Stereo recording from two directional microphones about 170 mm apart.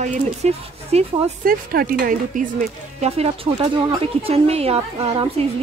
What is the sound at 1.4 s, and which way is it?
Speech, 60° right (ahead or behind).